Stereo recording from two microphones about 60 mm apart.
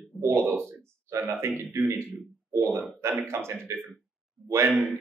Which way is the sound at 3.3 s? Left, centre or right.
Right.